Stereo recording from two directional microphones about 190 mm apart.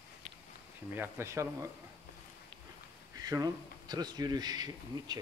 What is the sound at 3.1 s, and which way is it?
Speech, 20° right (ahead or behind).